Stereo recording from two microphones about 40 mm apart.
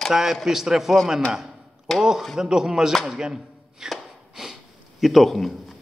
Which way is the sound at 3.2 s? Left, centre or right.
Centre.